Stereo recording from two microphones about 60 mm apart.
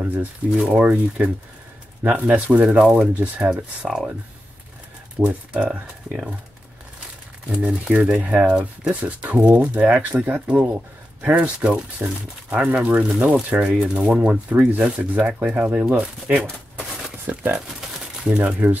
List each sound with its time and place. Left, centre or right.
0.2 s speech: right
5.2 s speech: right
5.7 s speech: centre
7.4 s speech: centre
10.4 s speech: centre